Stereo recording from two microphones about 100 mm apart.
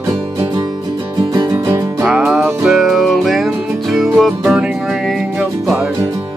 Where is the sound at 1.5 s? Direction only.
25° right (ahead or behind).